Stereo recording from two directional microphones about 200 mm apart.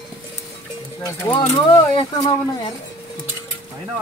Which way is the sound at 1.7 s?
25° left (ahead or behind).